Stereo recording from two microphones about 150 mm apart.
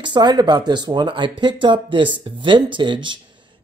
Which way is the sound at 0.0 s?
30° right (ahead or behind).